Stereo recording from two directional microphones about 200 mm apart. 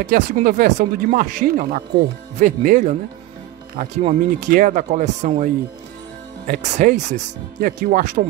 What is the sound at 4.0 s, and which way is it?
Speech, 35° right (ahead or behind).